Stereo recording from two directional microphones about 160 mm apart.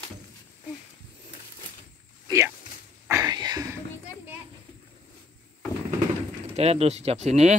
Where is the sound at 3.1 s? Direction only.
25° right (ahead or behind).